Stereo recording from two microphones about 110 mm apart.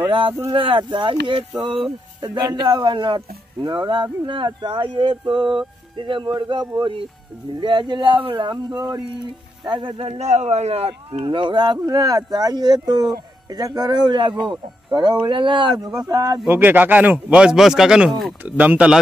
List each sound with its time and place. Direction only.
0.5 s speech: 50° right (ahead or behind)
9.7 s speech: 50° right (ahead or behind); by 10.9 s 75° right (ahead or behind)
10.9 s speech: 55° right (ahead or behind); by 16.4 s 35° right (ahead or behind)
16.4 s a man's voice: 20° right (ahead or behind)